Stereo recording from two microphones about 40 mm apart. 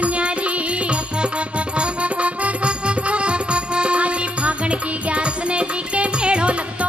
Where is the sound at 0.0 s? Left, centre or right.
Right.